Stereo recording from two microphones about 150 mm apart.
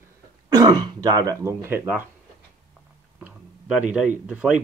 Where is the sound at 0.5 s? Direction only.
25° right (ahead or behind).